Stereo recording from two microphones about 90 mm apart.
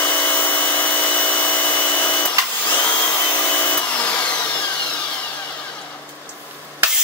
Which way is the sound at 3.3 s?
20° left (ahead or behind).